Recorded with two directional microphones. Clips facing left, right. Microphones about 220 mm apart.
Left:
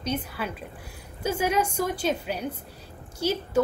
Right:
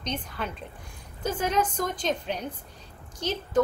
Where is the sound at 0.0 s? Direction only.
5° left (ahead or behind).